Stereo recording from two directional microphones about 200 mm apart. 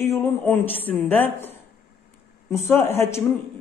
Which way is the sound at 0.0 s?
10° left (ahead or behind).